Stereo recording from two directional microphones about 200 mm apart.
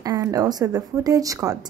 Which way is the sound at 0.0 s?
15° right (ahead or behind).